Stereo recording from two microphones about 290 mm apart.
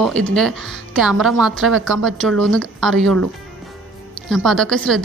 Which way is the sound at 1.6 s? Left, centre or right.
Right.